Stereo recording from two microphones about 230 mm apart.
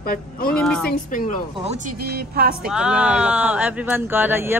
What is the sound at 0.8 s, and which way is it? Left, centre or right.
Speech, left.